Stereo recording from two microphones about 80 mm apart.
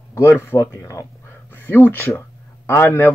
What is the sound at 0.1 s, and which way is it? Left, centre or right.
Speech, left.